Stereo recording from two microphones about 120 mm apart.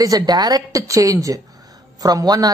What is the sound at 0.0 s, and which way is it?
A woman's voice, 30° right (ahead or behind).